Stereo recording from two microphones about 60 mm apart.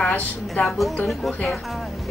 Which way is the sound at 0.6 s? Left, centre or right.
Centre.